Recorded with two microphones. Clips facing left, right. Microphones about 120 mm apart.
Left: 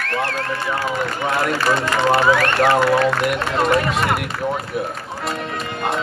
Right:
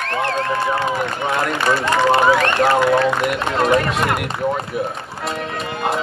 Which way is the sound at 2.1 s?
20° right (ahead or behind).